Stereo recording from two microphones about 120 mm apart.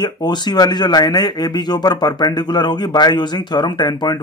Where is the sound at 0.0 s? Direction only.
35° left (ahead or behind).